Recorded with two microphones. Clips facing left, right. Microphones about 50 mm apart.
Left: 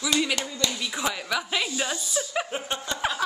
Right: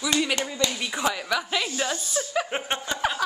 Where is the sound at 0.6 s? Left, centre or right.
Right.